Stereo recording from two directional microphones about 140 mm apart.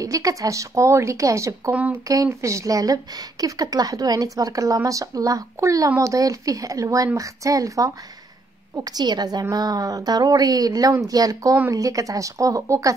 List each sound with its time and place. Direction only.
0.0 s a woman's voice: 25° right (ahead or behind)